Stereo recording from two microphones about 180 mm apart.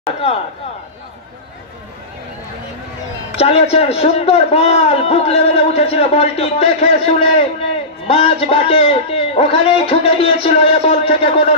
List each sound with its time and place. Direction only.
3.3 s a man's voice: 35° left (ahead or behind)